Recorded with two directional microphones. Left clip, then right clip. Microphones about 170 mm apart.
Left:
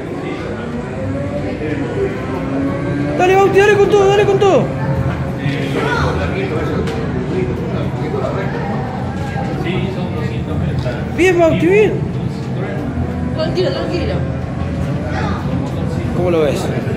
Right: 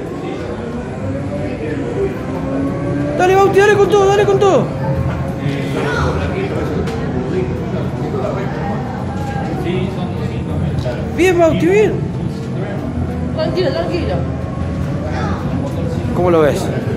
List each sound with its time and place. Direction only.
3.2 s a man's voice: centre (ahead or behind)
11.1 s a man's voice: centre (ahead or behind)
13.4 s speech: 40° right (ahead or behind)
16.3 s speech: 35° right (ahead or behind)